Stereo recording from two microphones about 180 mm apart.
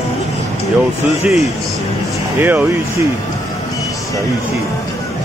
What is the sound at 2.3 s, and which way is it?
Speech, 10° right (ahead or behind).